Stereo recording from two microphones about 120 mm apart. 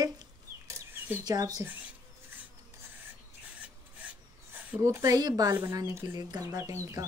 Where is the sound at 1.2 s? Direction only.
35° right (ahead or behind).